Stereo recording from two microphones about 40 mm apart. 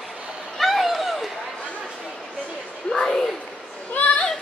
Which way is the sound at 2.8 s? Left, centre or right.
Centre.